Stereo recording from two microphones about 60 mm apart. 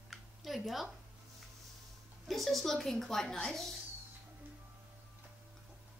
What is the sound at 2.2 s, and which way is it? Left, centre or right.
Speech, centre.